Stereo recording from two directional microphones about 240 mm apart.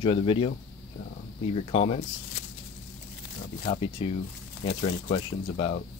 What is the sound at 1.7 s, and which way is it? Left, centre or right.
Speech, left.